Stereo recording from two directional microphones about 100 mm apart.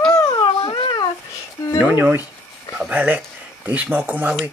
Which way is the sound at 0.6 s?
70° left (ahead or behind).